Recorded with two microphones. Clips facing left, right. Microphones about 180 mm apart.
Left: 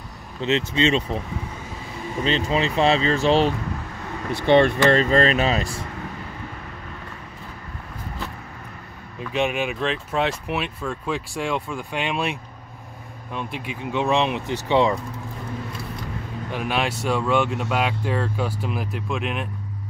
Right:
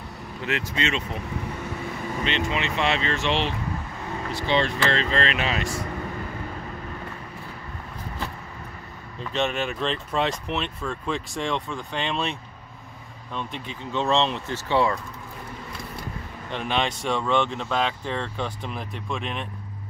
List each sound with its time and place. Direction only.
0.4 s speech: 25° left (ahead or behind)
2.2 s speech: 35° left (ahead or behind)
4.3 s speech: 55° left (ahead or behind); by 5.8 s 35° left (ahead or behind)
9.3 s speech: 10° left (ahead or behind)
16.4 s speech: 5° left (ahead or behind)